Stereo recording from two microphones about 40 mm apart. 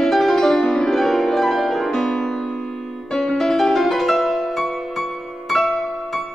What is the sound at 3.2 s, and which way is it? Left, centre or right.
Music, centre.